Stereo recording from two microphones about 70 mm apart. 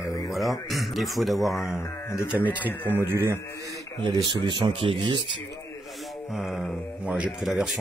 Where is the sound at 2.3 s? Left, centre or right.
Right.